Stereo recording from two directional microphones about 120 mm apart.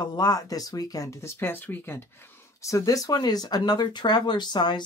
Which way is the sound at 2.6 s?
30° left (ahead or behind).